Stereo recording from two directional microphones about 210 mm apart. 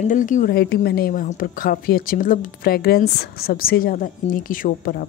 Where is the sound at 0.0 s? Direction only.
35° left (ahead or behind).